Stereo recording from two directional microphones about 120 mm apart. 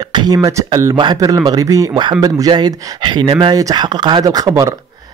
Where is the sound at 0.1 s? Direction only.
35° right (ahead or behind).